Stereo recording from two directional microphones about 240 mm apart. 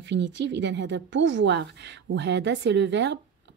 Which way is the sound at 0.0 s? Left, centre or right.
Right.